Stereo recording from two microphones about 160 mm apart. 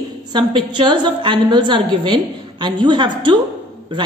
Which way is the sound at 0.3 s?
30° right (ahead or behind).